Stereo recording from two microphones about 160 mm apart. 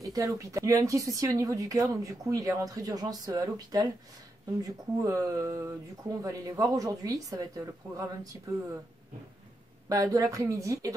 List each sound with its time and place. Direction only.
0.0 s speech: 20° right (ahead or behind)
9.8 s speech: 20° right (ahead or behind)